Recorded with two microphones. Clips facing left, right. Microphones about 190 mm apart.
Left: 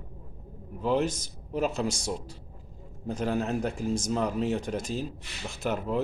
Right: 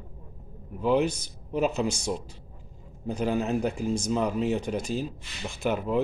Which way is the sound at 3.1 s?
Centre (ahead or behind).